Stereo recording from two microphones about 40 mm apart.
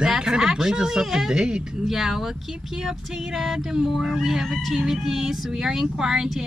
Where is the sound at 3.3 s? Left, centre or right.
Centre.